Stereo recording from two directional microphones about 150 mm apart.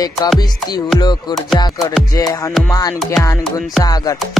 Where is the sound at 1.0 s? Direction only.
30° left (ahead or behind).